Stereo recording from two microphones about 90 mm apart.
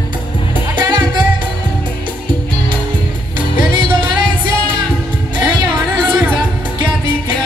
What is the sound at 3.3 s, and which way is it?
Music, 65° right (ahead or behind).